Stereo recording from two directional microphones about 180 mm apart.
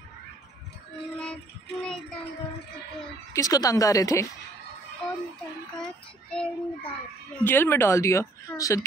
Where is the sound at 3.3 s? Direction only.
20° left (ahead or behind).